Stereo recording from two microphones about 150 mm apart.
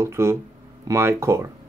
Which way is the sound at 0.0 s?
20° right (ahead or behind).